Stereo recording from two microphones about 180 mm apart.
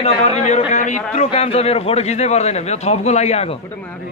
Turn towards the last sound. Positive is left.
turn(degrees=40)  # may be behind; listen again after turning